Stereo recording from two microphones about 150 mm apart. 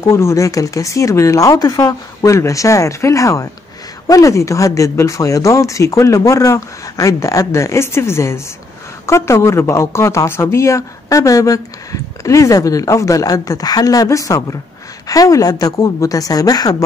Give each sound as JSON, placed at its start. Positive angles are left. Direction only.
{"t": 0.0, "sound": "speech", "side_deg": 20}